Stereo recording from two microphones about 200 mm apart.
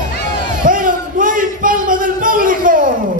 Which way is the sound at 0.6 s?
40° right (ahead or behind).